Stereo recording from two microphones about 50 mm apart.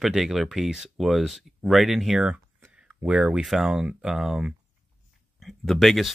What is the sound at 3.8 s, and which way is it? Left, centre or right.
Speech, centre.